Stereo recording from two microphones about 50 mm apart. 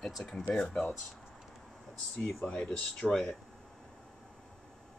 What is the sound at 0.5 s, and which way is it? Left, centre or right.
Speech, left.